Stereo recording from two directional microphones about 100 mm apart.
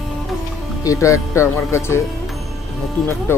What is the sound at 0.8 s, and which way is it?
Speech, 35° left (ahead or behind).